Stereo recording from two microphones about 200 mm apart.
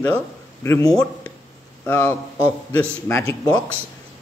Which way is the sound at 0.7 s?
15° left (ahead or behind).